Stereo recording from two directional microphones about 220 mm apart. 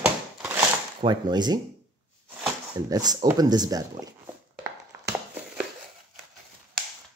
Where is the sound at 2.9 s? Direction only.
15° right (ahead or behind).